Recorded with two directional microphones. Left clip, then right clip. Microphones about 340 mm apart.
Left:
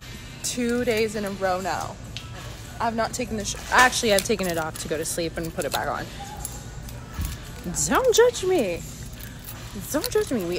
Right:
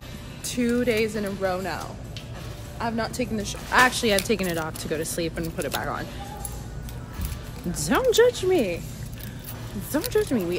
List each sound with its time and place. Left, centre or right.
0.4 s speech: centre
7.7 s speech: centre
9.8 s speech: centre